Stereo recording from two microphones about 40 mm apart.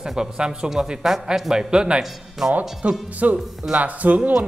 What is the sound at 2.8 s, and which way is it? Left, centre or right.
Speech, right.